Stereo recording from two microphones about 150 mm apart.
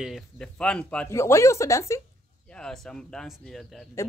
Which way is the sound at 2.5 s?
5° left (ahead or behind).